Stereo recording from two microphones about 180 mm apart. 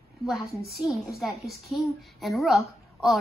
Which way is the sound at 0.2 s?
Centre (ahead or behind).